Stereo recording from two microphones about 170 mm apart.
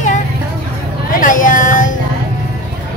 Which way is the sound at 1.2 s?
50° left (ahead or behind).